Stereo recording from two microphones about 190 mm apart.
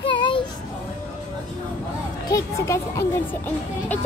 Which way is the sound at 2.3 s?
15° left (ahead or behind).